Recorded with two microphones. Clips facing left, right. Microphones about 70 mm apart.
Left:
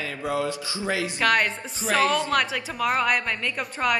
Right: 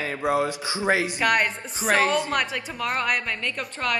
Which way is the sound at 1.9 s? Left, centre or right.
Right.